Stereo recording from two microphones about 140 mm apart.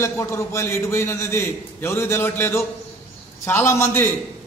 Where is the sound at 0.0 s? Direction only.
20° left (ahead or behind).